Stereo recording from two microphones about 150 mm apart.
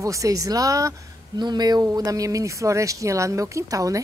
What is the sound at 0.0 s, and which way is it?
A woman's voice, 20° right (ahead or behind).